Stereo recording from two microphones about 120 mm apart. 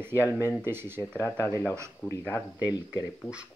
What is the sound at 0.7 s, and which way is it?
Speech, 20° right (ahead or behind).